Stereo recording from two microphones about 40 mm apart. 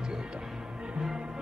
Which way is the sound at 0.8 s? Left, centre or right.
Right.